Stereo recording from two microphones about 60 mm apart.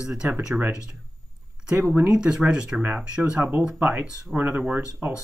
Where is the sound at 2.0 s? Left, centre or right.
Centre.